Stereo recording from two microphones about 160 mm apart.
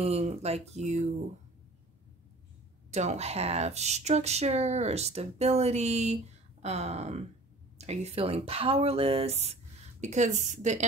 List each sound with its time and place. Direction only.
0.0 s speech: 40° right (ahead or behind)
2.9 s speech: 45° right (ahead or behind)